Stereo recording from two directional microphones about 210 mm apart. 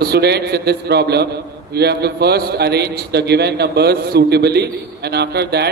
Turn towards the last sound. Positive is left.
turn(degrees=-50)  # may be behind; listen again after turning